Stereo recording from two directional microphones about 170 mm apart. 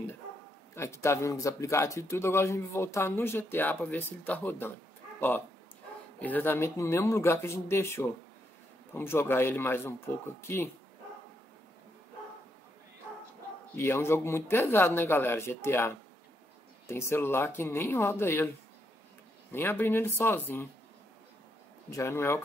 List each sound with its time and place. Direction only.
0.7 s speech: 15° left (ahead or behind)
6.1 s speech: 10° left (ahead or behind)
13.7 s speech: 15° left (ahead or behind)
19.5 s speech: 15° left (ahead or behind)
21.9 s speech: 15° left (ahead or behind)